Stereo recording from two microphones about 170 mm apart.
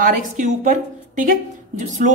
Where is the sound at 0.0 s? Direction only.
50° right (ahead or behind).